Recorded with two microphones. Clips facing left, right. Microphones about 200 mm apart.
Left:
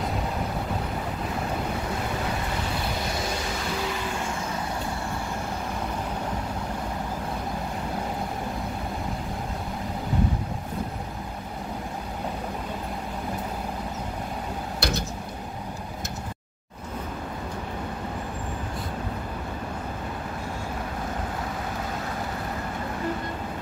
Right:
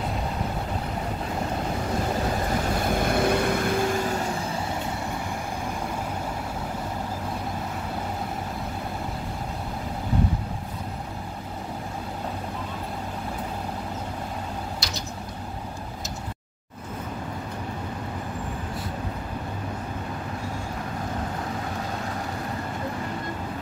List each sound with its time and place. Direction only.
2.9 s vehicle: 55° right (ahead or behind)
14.8 s vehicle: 55° left (ahead or behind)